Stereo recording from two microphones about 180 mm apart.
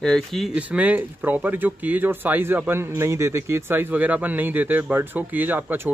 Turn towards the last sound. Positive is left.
turn(degrees=-10)  # may be behind; listen again after turning